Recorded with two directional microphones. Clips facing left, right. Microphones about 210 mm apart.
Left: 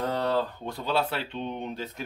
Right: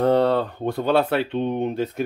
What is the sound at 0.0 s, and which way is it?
Speech, 60° right (ahead or behind).